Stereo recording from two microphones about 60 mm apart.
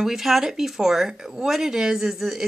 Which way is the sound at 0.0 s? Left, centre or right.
Centre.